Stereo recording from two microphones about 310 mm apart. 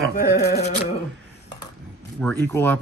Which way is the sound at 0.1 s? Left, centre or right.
Left.